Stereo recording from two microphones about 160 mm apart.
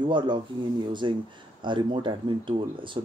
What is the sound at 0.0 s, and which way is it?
Speech, 30° right (ahead or behind).